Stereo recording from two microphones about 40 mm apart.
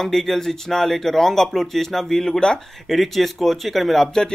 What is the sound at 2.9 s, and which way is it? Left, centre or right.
Speech, centre.